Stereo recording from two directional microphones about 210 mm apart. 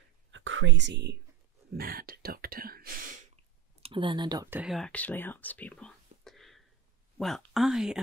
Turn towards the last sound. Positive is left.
turn(degrees=0)  # may be behind; listen again after turning